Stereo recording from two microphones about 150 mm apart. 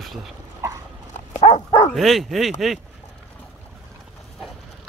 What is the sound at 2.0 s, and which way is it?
Speech, centre (ahead or behind).